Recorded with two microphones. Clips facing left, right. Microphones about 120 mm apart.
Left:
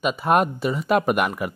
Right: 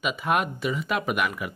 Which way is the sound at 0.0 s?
40° left (ahead or behind).